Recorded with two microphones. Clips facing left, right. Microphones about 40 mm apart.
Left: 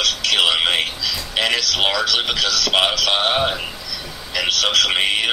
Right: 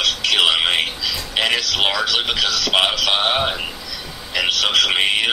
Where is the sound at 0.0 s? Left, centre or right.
Centre.